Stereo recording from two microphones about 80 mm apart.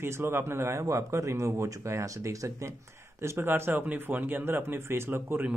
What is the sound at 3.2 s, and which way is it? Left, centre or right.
Speech, right.